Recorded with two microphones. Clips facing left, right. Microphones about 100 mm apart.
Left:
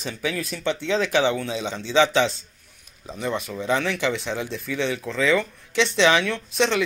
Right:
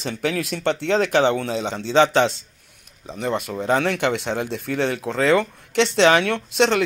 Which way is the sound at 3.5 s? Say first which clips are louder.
Right 4 dB; 45° right (ahead or behind).